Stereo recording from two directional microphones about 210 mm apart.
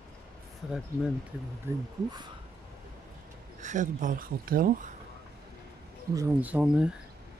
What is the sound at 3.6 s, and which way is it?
Speech, 35° right (ahead or behind).